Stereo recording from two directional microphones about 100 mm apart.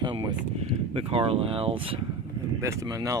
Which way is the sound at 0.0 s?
50° right (ahead or behind).